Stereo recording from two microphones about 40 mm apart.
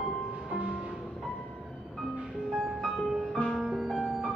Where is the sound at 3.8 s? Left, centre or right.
Centre.